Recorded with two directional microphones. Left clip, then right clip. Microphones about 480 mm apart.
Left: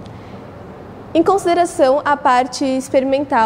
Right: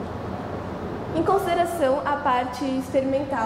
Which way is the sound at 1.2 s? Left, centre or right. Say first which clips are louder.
Left 6 dB; left.